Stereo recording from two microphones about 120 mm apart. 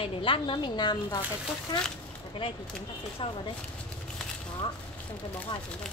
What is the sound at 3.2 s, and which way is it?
Speech, 45° left (ahead or behind).